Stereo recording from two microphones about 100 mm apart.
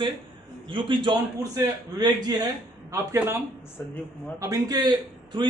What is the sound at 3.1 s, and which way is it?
A man's voice, 25° right (ahead or behind).